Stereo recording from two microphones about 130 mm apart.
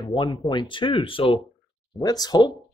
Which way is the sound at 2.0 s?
30° left (ahead or behind).